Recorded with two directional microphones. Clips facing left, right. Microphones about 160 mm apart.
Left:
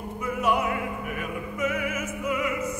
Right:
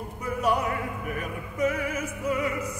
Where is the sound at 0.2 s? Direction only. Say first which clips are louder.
Left 1 dB; 35° right (ahead or behind).